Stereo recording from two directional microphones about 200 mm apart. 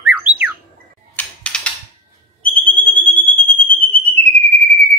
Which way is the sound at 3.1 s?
25° right (ahead or behind).